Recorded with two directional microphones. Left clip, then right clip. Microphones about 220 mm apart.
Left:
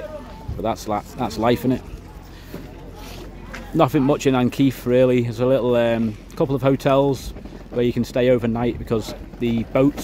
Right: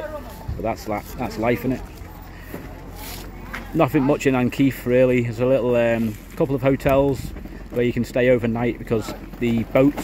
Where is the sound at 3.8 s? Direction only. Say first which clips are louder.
Left 1 dB; 5° left (ahead or behind).